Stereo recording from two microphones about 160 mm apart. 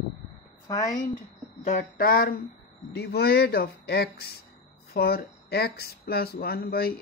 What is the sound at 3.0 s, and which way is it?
Speech, 90° left.